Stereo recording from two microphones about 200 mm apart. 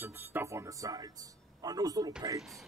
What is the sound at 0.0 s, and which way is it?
Speech, 10° right (ahead or behind).